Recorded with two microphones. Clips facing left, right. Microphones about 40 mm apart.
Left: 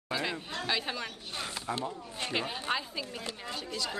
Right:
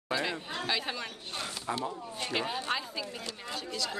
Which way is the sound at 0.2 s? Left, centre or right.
Centre.